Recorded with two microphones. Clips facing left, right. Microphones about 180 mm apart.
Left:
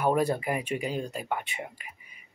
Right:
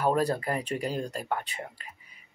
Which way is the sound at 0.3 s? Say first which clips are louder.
Left 1 dB; 10° left (ahead or behind).